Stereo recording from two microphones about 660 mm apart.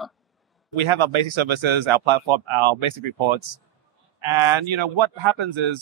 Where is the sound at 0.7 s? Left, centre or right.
Right.